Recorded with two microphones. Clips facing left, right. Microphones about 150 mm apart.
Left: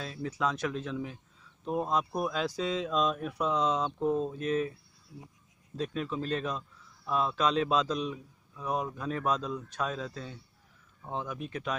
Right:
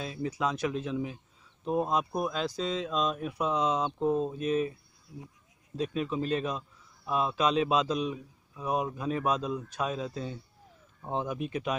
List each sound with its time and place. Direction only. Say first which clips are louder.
0.0 s a man's voice: right 1 dB; 10° right (ahead or behind)
5.8 s a man's voice: right 3 dB; 5° right (ahead or behind)